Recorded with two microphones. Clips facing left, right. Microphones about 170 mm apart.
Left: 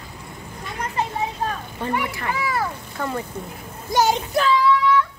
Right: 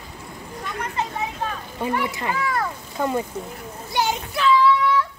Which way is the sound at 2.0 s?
20° right (ahead or behind).